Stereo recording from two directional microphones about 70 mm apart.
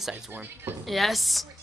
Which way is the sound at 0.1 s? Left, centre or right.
Right.